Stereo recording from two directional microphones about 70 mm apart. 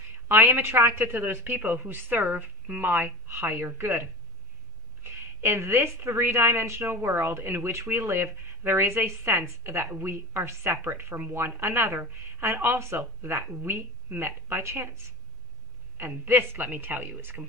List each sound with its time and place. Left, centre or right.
0.3 s a woman's voice: right
16.3 s a woman's voice: right